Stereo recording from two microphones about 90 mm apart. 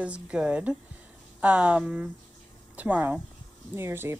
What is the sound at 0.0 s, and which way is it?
A woman's voice, 10° right (ahead or behind).